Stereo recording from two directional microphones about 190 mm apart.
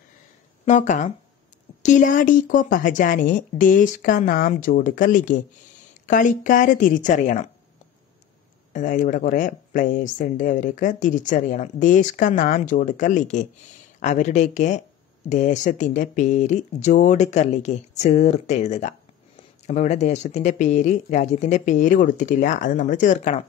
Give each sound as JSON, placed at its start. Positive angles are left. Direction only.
{"t": 0.7, "sound": "speech", "side_deg": 40}
{"t": 8.7, "sound": "speech", "side_deg": 40}